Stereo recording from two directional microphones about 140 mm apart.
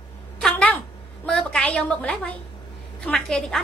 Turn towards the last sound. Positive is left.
turn(degrees=5)  # may be behind; listen again after turning